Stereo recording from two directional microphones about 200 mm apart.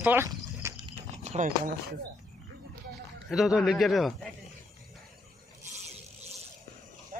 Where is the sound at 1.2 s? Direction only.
40° right (ahead or behind).